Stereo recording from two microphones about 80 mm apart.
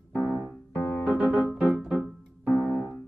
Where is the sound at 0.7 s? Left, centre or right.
Left.